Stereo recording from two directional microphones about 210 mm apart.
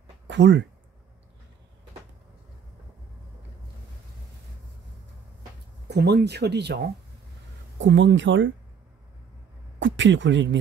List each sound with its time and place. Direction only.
0.3 s speech: 55° right (ahead or behind)
5.9 s speech: 50° right (ahead or behind)
9.8 s speech: 60° right (ahead or behind)